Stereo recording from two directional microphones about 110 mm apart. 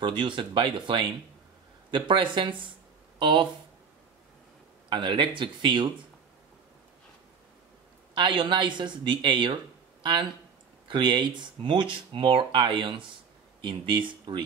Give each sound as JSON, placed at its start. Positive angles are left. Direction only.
{"t": 0.0, "sound": "speech", "side_deg": -45}
{"t": 4.8, "sound": "speech", "side_deg": -45}
{"t": 8.1, "sound": "speech", "side_deg": -45}
{"t": 10.9, "sound": "speech", "side_deg": -45}